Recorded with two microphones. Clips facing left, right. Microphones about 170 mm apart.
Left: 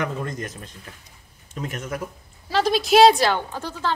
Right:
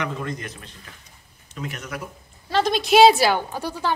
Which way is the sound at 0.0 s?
45° left (ahead or behind).